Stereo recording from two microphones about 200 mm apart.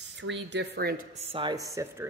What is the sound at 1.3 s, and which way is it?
Speech, 20° right (ahead or behind).